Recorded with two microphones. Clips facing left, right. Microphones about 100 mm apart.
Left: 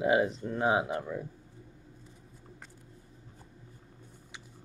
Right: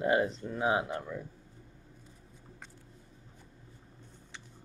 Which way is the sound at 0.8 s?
15° left (ahead or behind).